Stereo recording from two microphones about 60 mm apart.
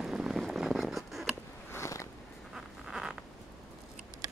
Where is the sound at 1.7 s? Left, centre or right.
Left.